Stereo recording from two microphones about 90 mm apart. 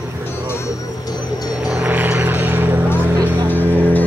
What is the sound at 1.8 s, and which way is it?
Vehicle, 20° right (ahead or behind).